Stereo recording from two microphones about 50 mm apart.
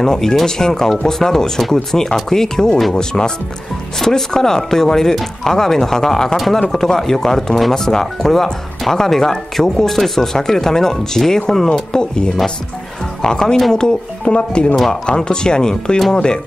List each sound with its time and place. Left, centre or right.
0.0 s speech: centre
14.2 s speech: left